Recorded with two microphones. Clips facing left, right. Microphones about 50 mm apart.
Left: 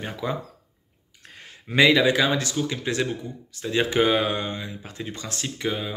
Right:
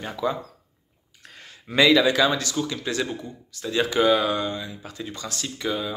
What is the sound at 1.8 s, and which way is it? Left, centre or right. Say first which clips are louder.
Speech: even; centre.